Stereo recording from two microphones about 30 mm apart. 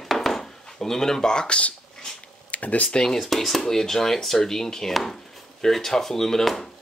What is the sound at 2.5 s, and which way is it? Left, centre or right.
Speech, left.